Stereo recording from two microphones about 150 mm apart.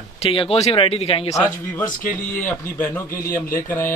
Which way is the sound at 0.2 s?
40° left (ahead or behind).